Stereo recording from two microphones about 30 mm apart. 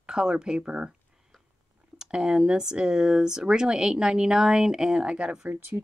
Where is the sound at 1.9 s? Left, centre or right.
Right.